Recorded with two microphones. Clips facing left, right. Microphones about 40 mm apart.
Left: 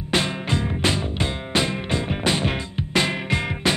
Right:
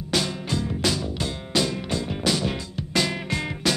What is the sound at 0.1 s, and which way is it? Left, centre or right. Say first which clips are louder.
Music: left 3 dB; left.